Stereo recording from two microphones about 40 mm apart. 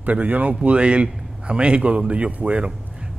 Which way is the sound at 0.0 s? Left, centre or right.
Right.